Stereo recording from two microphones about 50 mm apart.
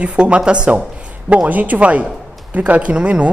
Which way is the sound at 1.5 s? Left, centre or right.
Right.